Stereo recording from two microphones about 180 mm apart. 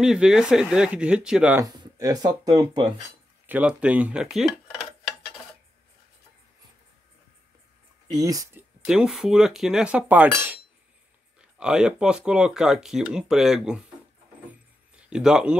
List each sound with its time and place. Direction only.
0.0 s speech: 5° right (ahead or behind)
1.6 s speech: 20° right (ahead or behind)
3.4 s a sound: 10° right (ahead or behind)
8.1 s speech: 20° right (ahead or behind)
8.8 s speech: 5° right (ahead or behind)
14.5 s a sound: 5° right (ahead or behind)